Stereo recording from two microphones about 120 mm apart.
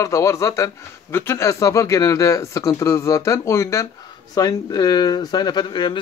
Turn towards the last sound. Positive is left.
turn(degrees=40)  # may be behind; listen again after turning